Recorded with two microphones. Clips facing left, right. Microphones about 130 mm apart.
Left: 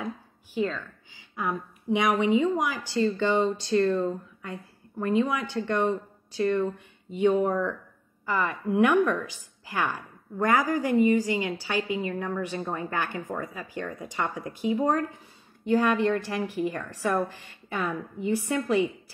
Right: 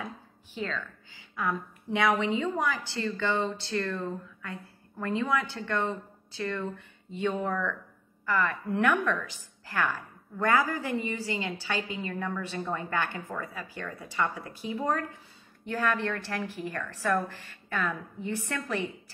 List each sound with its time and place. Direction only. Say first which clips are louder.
0.6 s a woman's voice: left 6 dB; 15° left (ahead or behind)
8.3 s a woman's voice: left 2 dB; 15° left (ahead or behind)